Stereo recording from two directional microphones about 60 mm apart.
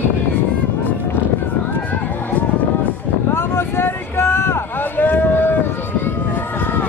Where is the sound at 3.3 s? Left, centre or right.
Left.